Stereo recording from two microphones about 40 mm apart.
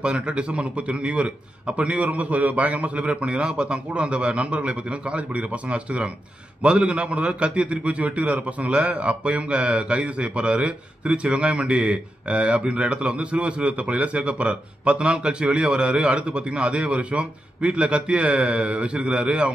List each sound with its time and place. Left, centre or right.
0.0 s a man's voice: right